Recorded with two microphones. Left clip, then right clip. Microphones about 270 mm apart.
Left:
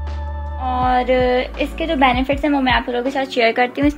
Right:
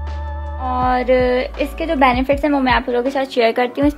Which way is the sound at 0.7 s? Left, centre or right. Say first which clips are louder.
Even; centre.